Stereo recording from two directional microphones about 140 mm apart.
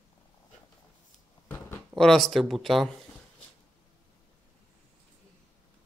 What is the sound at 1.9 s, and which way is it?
Speech, centre (ahead or behind).